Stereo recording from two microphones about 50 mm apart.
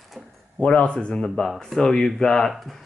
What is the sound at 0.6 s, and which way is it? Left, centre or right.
Speech, left.